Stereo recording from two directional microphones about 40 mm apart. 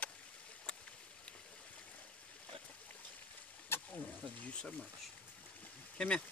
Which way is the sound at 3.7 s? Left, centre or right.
Left.